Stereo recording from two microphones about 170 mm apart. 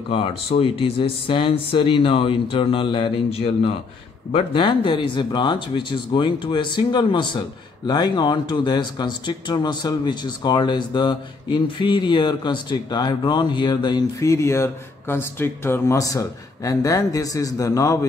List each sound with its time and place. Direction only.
0.1 s speech: 30° left (ahead or behind)